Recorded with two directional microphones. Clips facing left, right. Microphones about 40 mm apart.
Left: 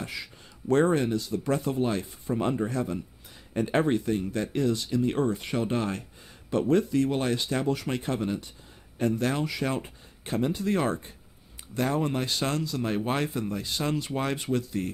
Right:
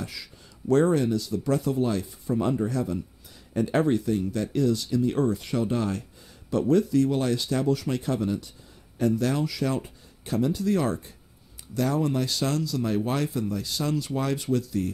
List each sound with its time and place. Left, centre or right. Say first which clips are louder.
0.0 s speech: left 1 dB; left